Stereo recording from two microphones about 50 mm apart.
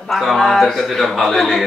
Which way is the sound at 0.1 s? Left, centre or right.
Centre.